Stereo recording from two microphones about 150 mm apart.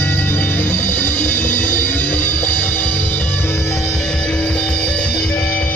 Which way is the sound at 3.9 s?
5° left (ahead or behind).